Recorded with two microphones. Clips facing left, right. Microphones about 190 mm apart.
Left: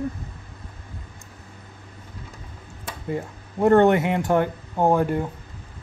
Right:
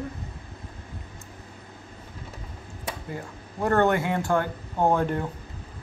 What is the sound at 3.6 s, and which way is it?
Speech, 20° left (ahead or behind).